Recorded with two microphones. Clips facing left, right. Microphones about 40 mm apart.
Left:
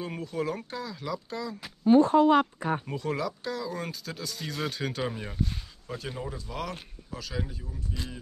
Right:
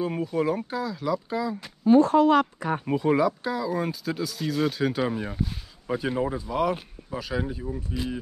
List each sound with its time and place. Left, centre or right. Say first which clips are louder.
0.0 s speech: right 7 dB; centre
2.0 s speech: right 2 dB; right
2.8 s speech: right 9 dB; centre
5.9 s speech: right 10 dB; centre